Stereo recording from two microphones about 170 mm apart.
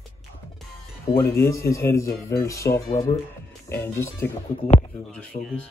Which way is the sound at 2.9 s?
30° left (ahead or behind).